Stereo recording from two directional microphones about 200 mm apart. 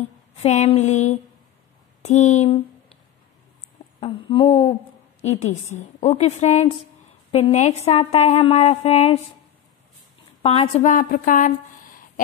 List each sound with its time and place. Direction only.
0.4 s a woman's voice: 30° left (ahead or behind)
4.0 s a woman's voice: 25° left (ahead or behind)
10.4 s a woman's voice: 30° left (ahead or behind)